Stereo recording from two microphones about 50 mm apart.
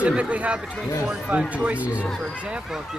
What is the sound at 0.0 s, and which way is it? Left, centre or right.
Speech, right.